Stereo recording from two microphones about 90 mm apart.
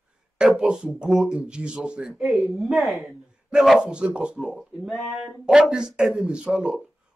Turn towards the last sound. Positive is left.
turn(degrees=-15)  # may be behind; listen again after turning